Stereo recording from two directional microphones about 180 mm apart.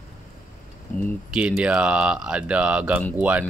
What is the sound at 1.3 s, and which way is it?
Speech, 5° right (ahead or behind).